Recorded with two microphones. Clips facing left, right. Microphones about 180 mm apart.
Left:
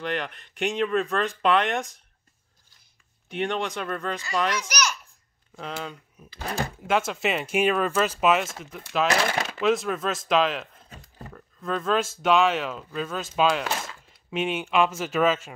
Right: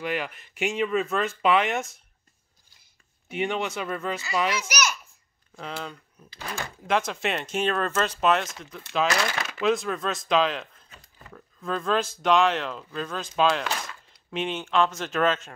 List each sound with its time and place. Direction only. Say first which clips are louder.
0.0 s speech: even; 5° right (ahead or behind)
3.3 s speech: even; 5° right (ahead or behind)
10.9 s a sound: left 7 dB; 40° left (ahead or behind)
11.3 s speech: left 1 dB; centre (ahead or behind)